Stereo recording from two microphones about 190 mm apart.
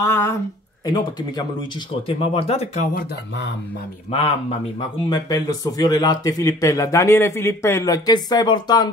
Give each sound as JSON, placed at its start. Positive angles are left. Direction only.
{"t": 0.0, "sound": "speech", "side_deg": 15}
{"t": 2.0, "sound": "speech", "side_deg": 30}
{"t": 4.1, "sound": "speech", "side_deg": 35}
{"t": 5.1, "sound": "speech", "side_deg": 20}